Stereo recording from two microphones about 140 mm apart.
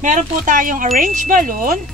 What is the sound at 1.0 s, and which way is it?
Wind chime, 70° right (ahead or behind).